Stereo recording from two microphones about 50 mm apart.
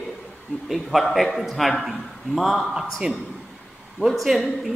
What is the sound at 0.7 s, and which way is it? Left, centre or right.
A woman's voice, centre.